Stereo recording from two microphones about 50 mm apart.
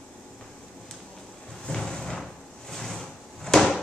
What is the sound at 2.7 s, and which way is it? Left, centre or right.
Drawer open or close, centre.